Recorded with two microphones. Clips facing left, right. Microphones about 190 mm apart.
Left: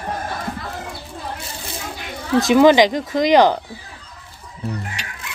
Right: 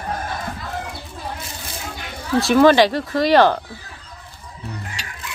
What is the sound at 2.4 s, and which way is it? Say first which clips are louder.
Speech: left 1 dB; 15° left (ahead or behind).